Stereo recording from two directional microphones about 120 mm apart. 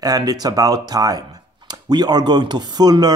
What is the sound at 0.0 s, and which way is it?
Speech, 30° right (ahead or behind).